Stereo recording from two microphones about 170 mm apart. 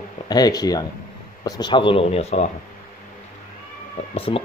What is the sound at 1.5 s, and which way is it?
Speech, 25° left (ahead or behind).